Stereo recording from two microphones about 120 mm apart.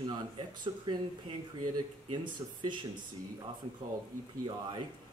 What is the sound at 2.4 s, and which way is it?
Speech, 40° right (ahead or behind).